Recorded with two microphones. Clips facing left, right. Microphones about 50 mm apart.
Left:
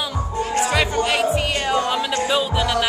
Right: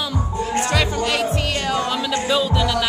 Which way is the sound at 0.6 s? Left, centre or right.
Centre.